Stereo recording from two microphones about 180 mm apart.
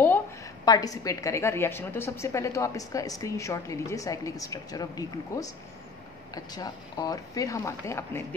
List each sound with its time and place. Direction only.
0.7 s a woman's voice: 20° left (ahead or behind)